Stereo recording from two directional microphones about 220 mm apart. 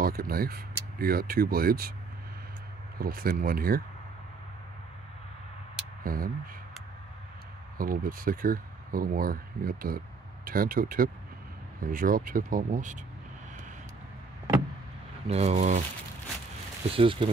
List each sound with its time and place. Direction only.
0.0 s speech: 40° right (ahead or behind)
3.0 s speech: 40° right (ahead or behind)
6.0 s speech: 40° right (ahead or behind)
7.7 s speech: 40° right (ahead or behind)
15.2 s speech: 30° right (ahead or behind)
16.9 s speech: 25° right (ahead or behind)